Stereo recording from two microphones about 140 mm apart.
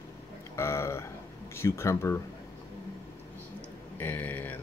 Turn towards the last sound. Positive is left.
turn(degrees=15)  # may be behind; listen again after turning